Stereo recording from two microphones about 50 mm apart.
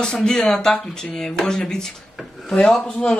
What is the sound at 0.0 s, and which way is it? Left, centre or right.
Speech, centre.